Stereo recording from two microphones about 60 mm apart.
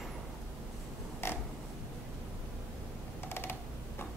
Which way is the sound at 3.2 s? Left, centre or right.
Left.